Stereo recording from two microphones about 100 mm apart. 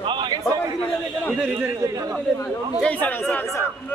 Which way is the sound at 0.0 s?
55° right (ahead or behind).